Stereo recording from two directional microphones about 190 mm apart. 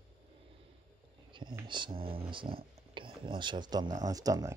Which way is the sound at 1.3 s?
25° right (ahead or behind).